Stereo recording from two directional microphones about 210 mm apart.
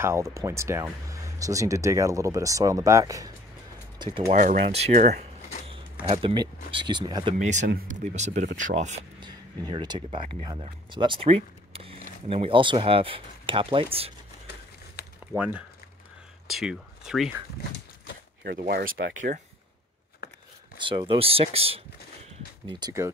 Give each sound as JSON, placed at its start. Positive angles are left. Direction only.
{"t": 0.0, "sound": "speech", "side_deg": -15}
{"t": 4.3, "sound": "speech", "side_deg": -40}
{"t": 7.3, "sound": "speech", "side_deg": -35}
{"t": 9.2, "sound": "speech", "side_deg": -20}
{"t": 15.3, "sound": "speech", "side_deg": -5}
{"t": 18.4, "sound": "speech", "side_deg": -45}
{"t": 20.8, "sound": "speech", "side_deg": -25}